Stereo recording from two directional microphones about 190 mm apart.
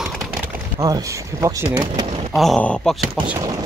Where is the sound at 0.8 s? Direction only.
20° right (ahead or behind).